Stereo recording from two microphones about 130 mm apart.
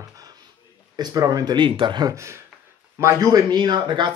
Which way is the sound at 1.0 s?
30° right (ahead or behind).